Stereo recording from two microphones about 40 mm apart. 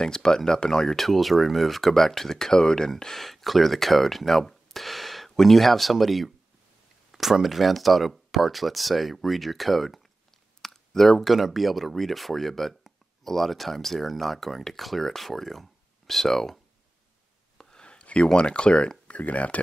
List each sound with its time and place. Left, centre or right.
0.0 s speech: centre
17.6 s a sound: centre
19.1 s speech: left